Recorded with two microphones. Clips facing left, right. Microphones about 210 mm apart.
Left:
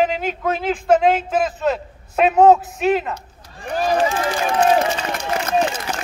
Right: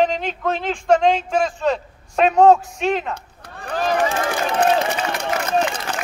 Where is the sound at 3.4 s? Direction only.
60° right (ahead or behind).